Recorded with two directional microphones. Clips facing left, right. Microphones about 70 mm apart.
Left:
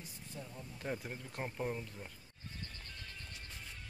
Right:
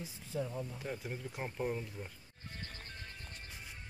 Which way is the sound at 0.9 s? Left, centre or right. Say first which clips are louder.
Right 1 dB; centre.